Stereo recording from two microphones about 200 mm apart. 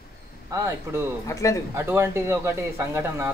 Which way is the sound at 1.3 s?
15° left (ahead or behind).